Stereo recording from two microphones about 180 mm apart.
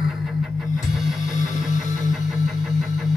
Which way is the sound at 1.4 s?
45° left (ahead or behind).